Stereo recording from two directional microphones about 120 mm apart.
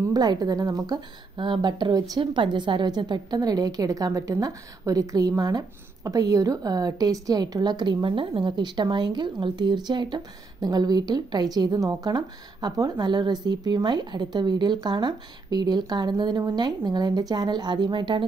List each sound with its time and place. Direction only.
0.0 s a woman's voice: 35° right (ahead or behind)